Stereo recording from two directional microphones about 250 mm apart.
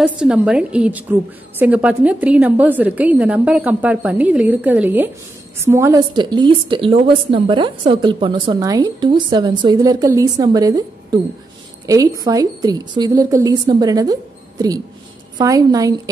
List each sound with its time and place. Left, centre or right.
0.0 s a woman's voice: centre
15.3 s a woman's voice: centre